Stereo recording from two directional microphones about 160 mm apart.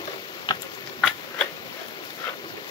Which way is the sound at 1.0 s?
5° left (ahead or behind).